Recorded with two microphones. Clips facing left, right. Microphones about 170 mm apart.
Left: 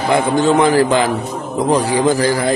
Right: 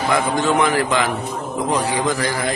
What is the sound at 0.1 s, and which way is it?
A man's voice, 30° left (ahead or behind).